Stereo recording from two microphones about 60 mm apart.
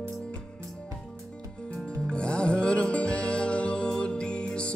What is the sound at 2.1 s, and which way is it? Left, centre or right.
Music, centre.